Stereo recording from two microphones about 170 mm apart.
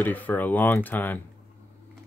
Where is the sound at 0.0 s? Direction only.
10° left (ahead or behind).